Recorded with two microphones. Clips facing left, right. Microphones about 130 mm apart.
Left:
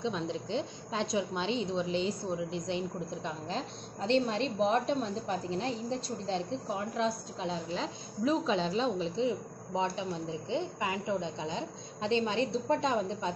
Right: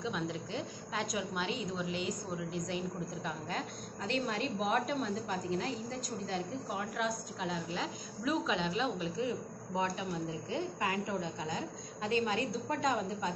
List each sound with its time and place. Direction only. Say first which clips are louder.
0.0 s a woman's voice: left 3 dB; 25° left (ahead or behind)